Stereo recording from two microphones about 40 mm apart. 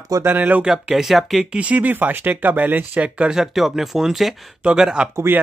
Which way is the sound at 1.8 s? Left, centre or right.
Right.